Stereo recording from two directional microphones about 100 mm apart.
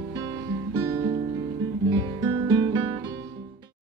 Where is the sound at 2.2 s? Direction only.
45° right (ahead or behind).